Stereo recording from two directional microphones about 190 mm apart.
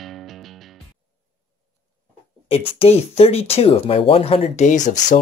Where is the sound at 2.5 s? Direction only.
30° left (ahead or behind).